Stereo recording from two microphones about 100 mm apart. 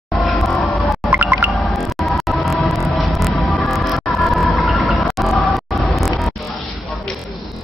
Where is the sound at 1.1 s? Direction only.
20° right (ahead or behind).